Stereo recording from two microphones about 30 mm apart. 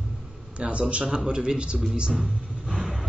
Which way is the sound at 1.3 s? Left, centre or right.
Right.